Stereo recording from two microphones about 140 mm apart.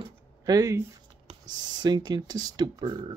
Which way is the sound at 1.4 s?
30° right (ahead or behind).